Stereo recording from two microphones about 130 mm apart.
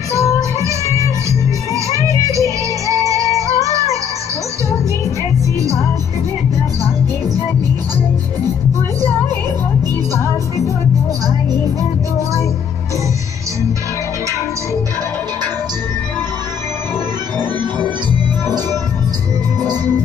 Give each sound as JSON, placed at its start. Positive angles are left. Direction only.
{"t": 0.4, "sound": "music", "side_deg": -25}
{"t": 19.6, "sound": "music", "side_deg": 15}